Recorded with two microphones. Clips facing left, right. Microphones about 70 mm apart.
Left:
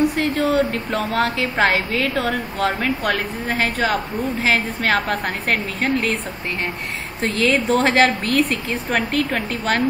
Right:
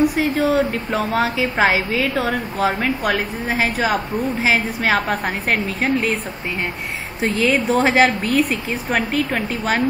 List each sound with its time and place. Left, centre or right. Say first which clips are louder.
0.0 s a woman's voice: right 1 dB; centre
7.2 s a woman's voice: right 1 dB; centre